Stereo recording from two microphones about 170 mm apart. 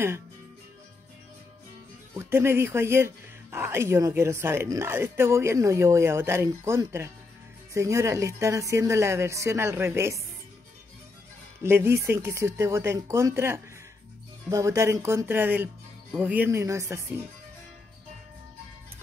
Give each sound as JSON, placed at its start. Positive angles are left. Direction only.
{"t": 2.1, "sound": "speech", "side_deg": -15}
{"t": 11.6, "sound": "speech", "side_deg": -15}